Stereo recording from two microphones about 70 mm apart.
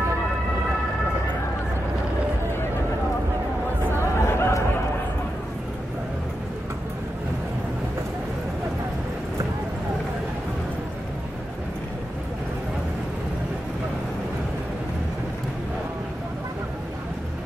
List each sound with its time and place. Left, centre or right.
4.2 s chatter: left